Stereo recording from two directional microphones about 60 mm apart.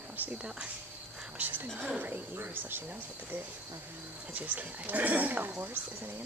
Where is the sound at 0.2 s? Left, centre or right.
Right.